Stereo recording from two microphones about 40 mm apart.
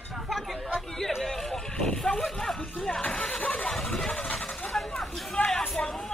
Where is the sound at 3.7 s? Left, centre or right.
Centre.